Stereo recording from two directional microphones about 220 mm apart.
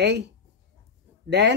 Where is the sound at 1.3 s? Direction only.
50° right (ahead or behind).